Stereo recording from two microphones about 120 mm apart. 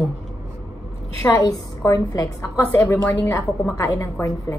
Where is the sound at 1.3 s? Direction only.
30° left (ahead or behind).